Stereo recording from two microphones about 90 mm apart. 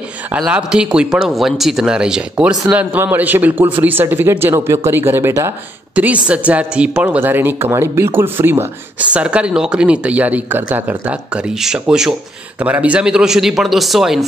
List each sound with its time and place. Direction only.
0.5 s speech: 10° right (ahead or behind); by 5.3 s 25° right (ahead or behind)
5.9 s speech: 15° right (ahead or behind)
9.1 s speech: 15° right (ahead or behind)
12.5 s speech: 15° right (ahead or behind)